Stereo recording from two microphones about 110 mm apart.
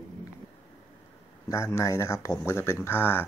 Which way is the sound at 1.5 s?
25° left (ahead or behind).